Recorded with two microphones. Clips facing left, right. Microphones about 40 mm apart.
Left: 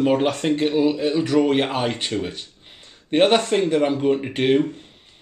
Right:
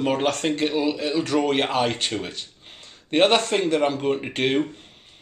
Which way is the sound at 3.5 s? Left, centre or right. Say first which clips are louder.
Left 2 dB; centre.